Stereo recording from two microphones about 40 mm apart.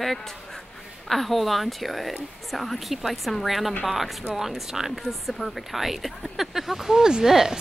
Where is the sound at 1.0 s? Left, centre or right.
Centre.